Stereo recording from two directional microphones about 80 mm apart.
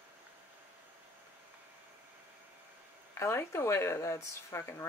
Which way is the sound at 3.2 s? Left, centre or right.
Left.